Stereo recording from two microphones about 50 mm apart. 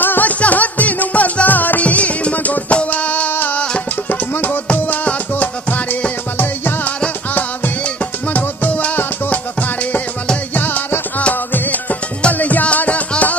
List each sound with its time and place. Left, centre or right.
0.0 s music: left
7.8 s music: left